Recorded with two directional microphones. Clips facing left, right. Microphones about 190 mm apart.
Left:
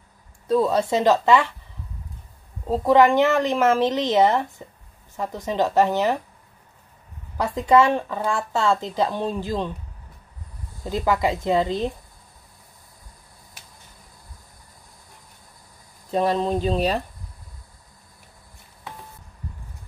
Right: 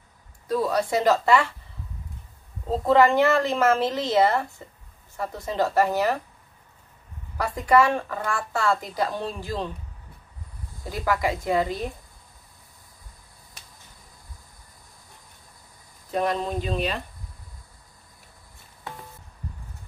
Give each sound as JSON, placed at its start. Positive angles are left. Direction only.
{"t": 0.5, "sound": "a woman's voice", "side_deg": 25}
{"t": 2.7, "sound": "a woman's voice", "side_deg": 15}
{"t": 7.3, "sound": "a woman's voice", "side_deg": 20}
{"t": 10.9, "sound": "a woman's voice", "side_deg": 25}
{"t": 16.1, "sound": "speech", "side_deg": 30}